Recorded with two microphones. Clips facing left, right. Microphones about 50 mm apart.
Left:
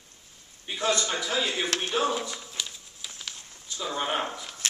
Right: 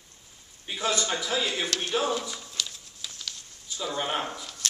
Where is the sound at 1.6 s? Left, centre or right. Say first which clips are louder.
Left 1 dB; left.